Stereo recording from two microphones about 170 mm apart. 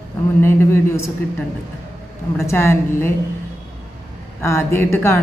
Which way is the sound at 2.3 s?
15° left (ahead or behind).